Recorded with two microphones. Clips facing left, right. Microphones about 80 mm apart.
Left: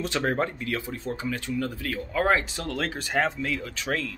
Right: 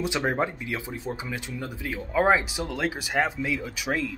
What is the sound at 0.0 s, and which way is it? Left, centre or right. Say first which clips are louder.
Speech: even; centre.